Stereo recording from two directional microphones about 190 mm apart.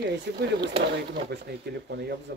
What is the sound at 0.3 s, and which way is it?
Speech, 65° right (ahead or behind).